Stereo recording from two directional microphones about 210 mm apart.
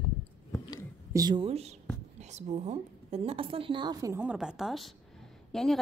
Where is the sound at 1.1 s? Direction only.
20° right (ahead or behind).